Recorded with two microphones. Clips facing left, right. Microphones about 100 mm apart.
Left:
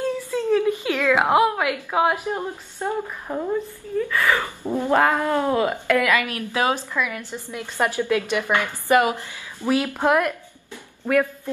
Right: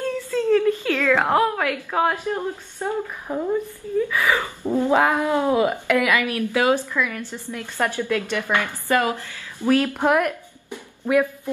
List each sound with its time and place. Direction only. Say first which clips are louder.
0.0 s a woman's voice: right 1 dB; 15° left (ahead or behind)
3.3 s speech: right 2 dB; centre (ahead or behind)
4.1 s cat: even; 15° right (ahead or behind)
6.3 s a woman's voice: right 3 dB; 20° left (ahead or behind)
10.7 s a sound: right 1 dB; 10° right (ahead or behind)